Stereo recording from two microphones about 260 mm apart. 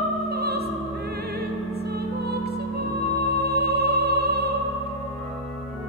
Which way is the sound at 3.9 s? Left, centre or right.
Right.